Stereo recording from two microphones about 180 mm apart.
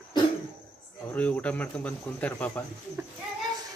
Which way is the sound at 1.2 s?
5° left (ahead or behind).